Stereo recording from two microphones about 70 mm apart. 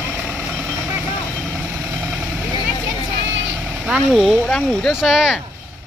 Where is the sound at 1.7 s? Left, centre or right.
Right.